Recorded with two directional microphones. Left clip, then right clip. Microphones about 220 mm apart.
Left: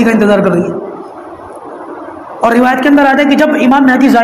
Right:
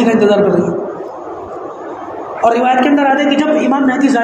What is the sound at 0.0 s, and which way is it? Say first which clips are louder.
Speech: left 2 dB; 50° left (ahead or behind).